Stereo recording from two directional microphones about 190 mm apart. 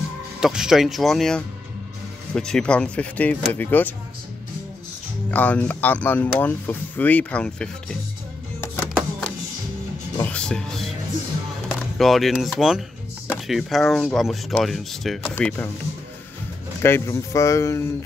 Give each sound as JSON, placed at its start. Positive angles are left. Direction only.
{"t": 0.4, "sound": "speech", "side_deg": -5}
{"t": 5.3, "sound": "speech", "side_deg": 10}
{"t": 8.5, "sound": "music", "side_deg": 5}
{"t": 11.7, "sound": "speech", "side_deg": 0}
{"t": 16.8, "sound": "speech", "side_deg": 15}